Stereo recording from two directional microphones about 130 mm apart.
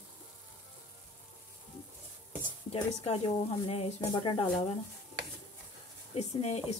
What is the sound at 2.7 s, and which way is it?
Speech, 50° left (ahead or behind).